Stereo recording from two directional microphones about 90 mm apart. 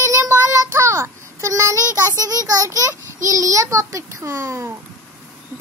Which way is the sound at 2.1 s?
45° right (ahead or behind).